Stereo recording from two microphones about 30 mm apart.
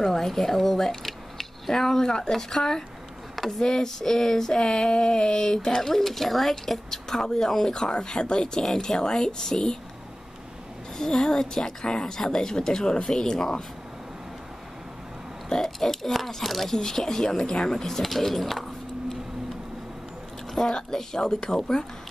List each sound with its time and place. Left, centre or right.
0.0 s speech: centre
1.0 s mechanisms: centre
3.3 s a sound: centre
3.6 s speech: centre
11.0 s speech: centre
15.5 s speech: centre
16.7 s speech: centre
18.0 s a sound: centre
20.5 s speech: centre